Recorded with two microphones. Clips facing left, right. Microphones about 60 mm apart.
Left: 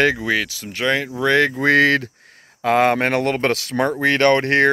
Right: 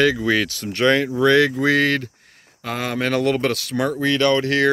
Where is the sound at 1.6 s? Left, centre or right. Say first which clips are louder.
Left 3 dB; left.